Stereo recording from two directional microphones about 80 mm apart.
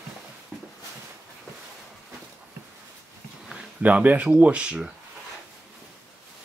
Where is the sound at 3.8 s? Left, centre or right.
Right.